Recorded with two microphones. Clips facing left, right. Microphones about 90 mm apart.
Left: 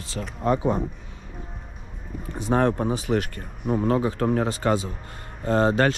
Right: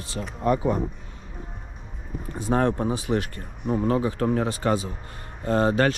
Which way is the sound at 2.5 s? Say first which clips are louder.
Left 1 dB; 40° left (ahead or behind).